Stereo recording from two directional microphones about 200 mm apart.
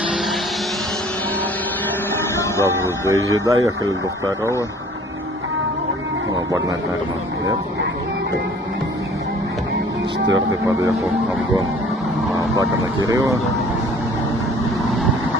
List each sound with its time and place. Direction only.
2.5 s speech: 15° left (ahead or behind)
3.1 s speech: 15° right (ahead or behind)
10.2 s speech: 15° right (ahead or behind)
12.4 s speech: 15° right (ahead or behind)